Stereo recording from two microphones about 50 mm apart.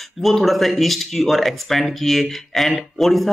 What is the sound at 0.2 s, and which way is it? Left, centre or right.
Speech, centre.